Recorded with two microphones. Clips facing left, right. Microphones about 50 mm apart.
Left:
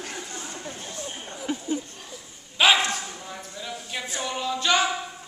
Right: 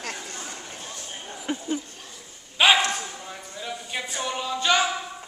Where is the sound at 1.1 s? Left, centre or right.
Centre.